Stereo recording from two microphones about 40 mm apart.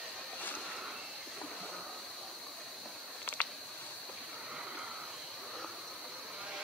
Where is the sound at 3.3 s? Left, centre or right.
Left.